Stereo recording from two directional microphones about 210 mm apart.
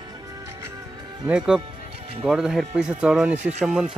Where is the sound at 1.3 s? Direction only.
5° right (ahead or behind).